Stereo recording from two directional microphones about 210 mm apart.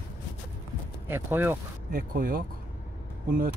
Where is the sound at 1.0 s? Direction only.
10° right (ahead or behind).